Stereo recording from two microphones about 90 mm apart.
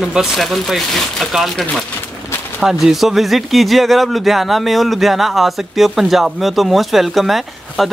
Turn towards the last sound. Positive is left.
turn(degrees=0)  # may be behind; listen again after turning